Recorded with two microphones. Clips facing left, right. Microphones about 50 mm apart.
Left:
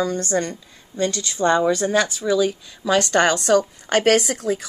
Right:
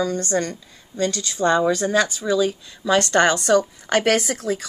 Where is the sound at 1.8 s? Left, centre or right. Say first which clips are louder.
Even; centre.